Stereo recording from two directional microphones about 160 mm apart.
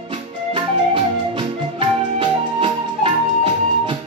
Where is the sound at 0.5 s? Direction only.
35° right (ahead or behind).